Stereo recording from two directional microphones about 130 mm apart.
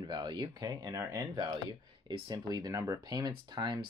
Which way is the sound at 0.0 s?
35° right (ahead or behind).